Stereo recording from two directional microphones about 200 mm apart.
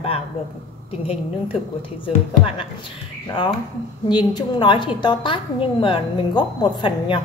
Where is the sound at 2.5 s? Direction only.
25° left (ahead or behind).